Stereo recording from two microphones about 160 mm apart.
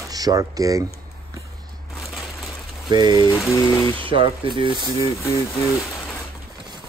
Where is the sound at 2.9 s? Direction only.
25° right (ahead or behind).